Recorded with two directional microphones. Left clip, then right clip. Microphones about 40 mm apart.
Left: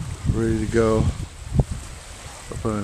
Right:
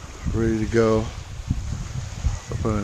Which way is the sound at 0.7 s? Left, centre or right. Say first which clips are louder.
Even; centre.